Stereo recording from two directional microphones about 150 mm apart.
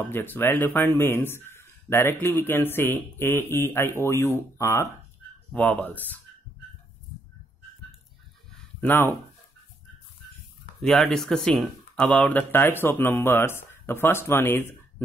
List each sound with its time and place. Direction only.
0.0 s speech: 15° left (ahead or behind)
8.8 s speech: 15° left (ahead or behind)
10.8 s speech: 5° left (ahead or behind)